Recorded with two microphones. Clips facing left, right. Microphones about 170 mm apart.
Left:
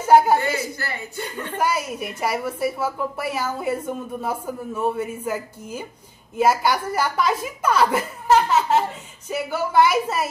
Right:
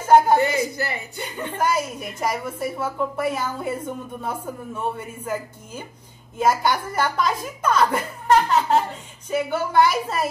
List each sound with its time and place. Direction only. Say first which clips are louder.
0.0 s a woman's voice: even; 5° left (ahead or behind)
0.7 s speech: right 2 dB; 20° right (ahead or behind)
1.6 s a woman's voice: even; 5° left (ahead or behind)